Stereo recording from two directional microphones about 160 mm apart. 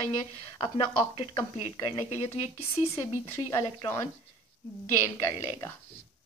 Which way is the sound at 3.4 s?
20° left (ahead or behind).